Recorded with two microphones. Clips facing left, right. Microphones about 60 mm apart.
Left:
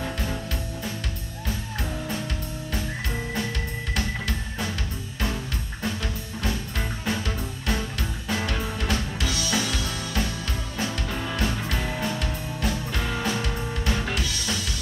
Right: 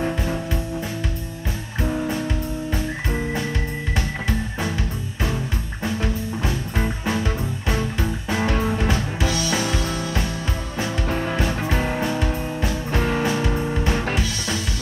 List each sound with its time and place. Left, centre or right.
3.9 s music: centre
5.9 s music: right
11.1 s music: right
11.3 s music: right
12.9 s music: right
13.2 s music: right